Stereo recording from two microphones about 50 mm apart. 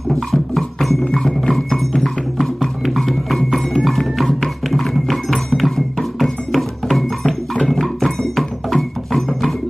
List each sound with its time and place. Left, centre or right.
0.1 s music: centre
1.0 s music: centre